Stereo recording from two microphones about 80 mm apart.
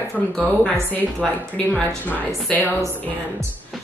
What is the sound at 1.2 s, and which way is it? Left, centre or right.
Speech, centre.